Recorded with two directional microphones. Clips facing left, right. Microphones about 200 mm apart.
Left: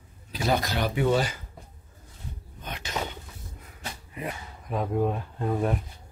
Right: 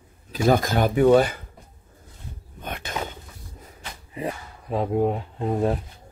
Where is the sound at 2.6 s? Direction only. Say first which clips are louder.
Right 5 dB; 55° right (ahead or behind).